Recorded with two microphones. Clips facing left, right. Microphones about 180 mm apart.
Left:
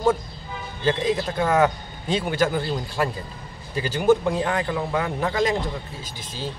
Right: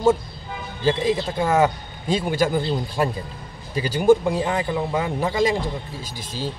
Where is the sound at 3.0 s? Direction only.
25° right (ahead or behind).